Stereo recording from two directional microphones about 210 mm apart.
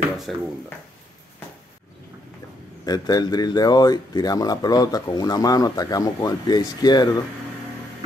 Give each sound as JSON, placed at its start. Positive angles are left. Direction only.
{"t": 0.3, "sound": "speech", "side_deg": 0}
{"t": 2.8, "sound": "speech", "side_deg": 20}